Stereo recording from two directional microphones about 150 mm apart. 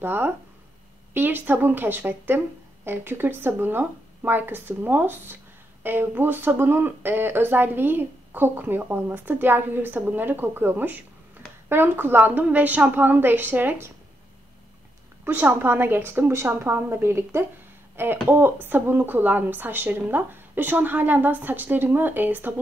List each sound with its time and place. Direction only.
0.0 s a woman's voice: 15° right (ahead or behind)
15.2 s a woman's voice: 10° right (ahead or behind)